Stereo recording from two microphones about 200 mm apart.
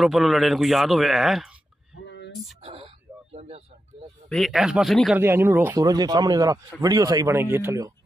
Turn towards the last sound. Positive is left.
turn(degrees=-15)  # may be behind; listen again after turning